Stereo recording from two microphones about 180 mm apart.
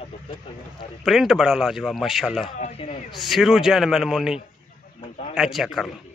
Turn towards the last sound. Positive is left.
turn(degrees=0)  # may be behind; listen again after turning